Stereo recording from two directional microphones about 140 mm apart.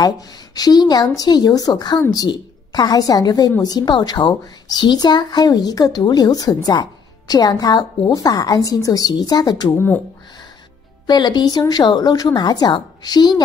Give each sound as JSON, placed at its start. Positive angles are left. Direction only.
{"t": 0.0, "sound": "speech", "side_deg": 30}
{"t": 9.8, "sound": "speech", "side_deg": 15}
{"t": 11.1, "sound": "speech", "side_deg": 30}